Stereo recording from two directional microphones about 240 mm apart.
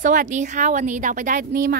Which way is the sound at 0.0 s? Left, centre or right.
Right.